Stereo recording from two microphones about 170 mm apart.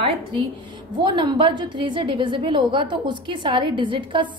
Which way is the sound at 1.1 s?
25° right (ahead or behind).